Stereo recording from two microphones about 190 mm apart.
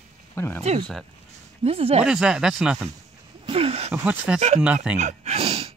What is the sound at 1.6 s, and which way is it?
Speech, 30° right (ahead or behind).